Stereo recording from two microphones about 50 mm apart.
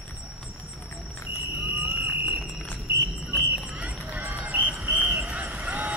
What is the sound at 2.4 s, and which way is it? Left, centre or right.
Cricket, left.